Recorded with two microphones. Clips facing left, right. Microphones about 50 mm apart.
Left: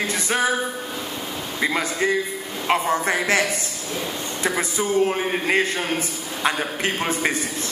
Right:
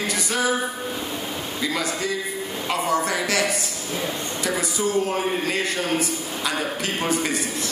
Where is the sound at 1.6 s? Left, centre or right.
Left.